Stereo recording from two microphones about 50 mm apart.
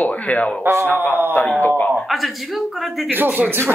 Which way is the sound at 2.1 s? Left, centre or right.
Centre.